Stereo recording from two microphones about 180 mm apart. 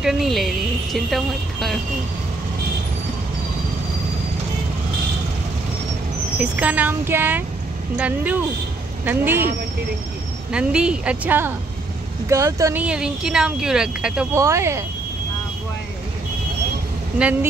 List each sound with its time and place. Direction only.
0.0 s speech: centre (ahead or behind)
6.3 s speech: 5° right (ahead or behind)
10.5 s speech: 5° right (ahead or behind)
12.8 s speech: 5° right (ahead or behind)
14.3 s speech: 15° right (ahead or behind)
17.2 s speech: 10° right (ahead or behind)